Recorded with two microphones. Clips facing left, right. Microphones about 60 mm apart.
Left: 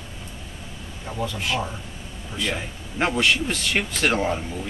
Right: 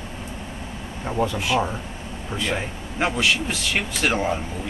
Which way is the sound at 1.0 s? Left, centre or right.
Right.